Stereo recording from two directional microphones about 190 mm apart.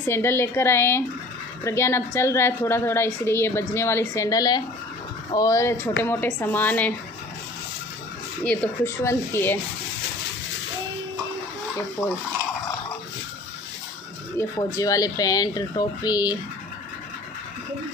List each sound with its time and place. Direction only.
0.0 s a woman's voice: 15° left (ahead or behind)
8.5 s a woman's voice: 10° left (ahead or behind)
14.3 s speech: 15° left (ahead or behind)